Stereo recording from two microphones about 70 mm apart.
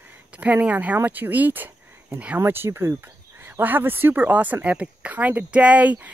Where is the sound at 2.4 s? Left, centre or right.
Right.